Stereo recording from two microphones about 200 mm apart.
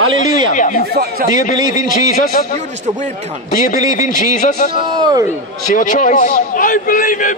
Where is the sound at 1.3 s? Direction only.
40° left (ahead or behind).